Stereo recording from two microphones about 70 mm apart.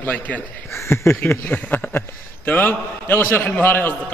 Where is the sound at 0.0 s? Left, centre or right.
Left.